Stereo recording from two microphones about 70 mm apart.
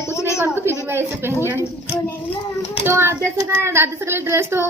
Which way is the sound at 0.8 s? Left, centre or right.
Right.